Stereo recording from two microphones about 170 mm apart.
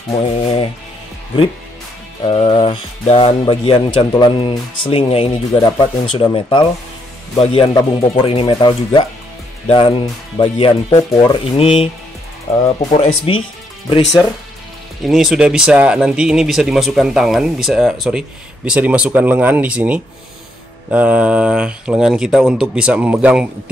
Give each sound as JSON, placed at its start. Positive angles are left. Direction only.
{"t": 0.1, "sound": "speech", "side_deg": 35}
{"t": 2.2, "sound": "speech", "side_deg": 30}
{"t": 11.4, "sound": "speech", "side_deg": 35}
{"t": 15.0, "sound": "speech", "side_deg": 0}